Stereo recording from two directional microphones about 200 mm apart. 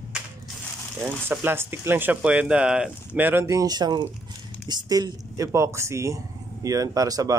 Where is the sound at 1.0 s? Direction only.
10° right (ahead or behind).